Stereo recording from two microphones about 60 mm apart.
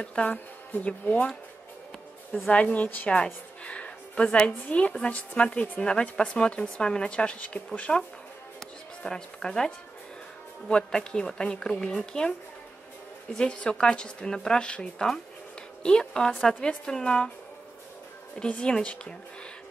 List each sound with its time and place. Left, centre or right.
0.0 s speech: centre
2.5 s speech: left
3.6 s a sound: left
4.5 s a woman's voice: left
8.5 s music: centre
10.7 s a woman's voice: centre
18.4 s a woman's voice: centre